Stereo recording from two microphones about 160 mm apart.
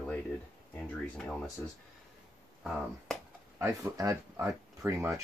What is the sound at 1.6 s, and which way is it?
Speech, 10° left (ahead or behind).